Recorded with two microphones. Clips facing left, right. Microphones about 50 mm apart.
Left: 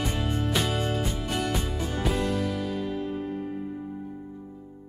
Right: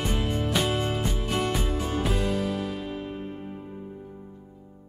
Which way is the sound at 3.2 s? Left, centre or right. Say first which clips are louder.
Left 5 dB; right.